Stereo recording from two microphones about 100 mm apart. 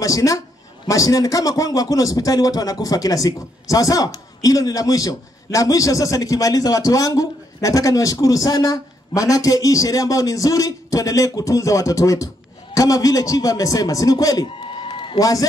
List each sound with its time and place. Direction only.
0.0 s a man's voice: 35° left (ahead or behind)
14.6 s a sound: 55° left (ahead or behind)
15.1 s a man's voice: 35° left (ahead or behind)